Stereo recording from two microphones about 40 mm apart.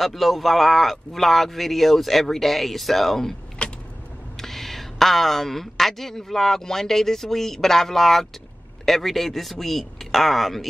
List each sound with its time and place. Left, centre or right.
0.0 s speech: centre
3.6 s vehicle: left
4.4 s speech: centre